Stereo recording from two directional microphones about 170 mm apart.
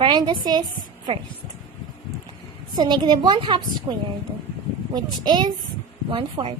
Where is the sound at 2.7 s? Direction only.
25° right (ahead or behind).